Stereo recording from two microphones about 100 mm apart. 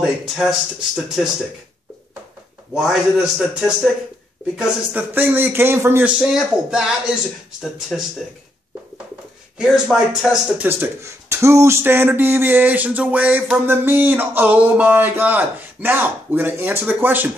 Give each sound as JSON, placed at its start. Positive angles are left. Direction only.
{"t": 0.0, "sound": "speech", "side_deg": -10}
{"t": 2.7, "sound": "speech", "side_deg": -5}
{"t": 4.9, "sound": "speech", "side_deg": -20}
{"t": 6.0, "sound": "a man's voice", "side_deg": -5}
{"t": 9.6, "sound": "speech", "side_deg": -5}
{"t": 10.6, "sound": "speech", "side_deg": -20}